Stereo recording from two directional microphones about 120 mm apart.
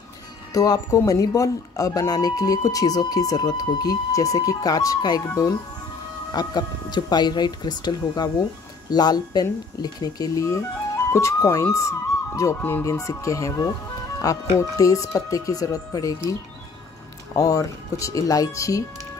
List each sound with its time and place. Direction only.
0.5 s speech: 30° left (ahead or behind)
17.4 s speech: 30° left (ahead or behind)